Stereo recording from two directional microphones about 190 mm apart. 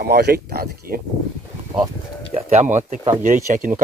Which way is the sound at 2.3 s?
35° right (ahead or behind).